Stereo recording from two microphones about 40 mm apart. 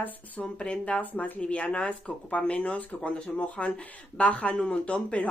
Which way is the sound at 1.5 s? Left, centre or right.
Left.